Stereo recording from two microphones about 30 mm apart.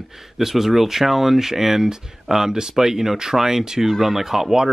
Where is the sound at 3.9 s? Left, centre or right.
Centre.